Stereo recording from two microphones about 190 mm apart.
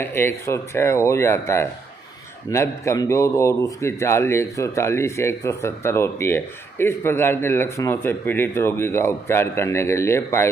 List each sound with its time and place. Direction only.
0.0 s a man's voice: 10° left (ahead or behind)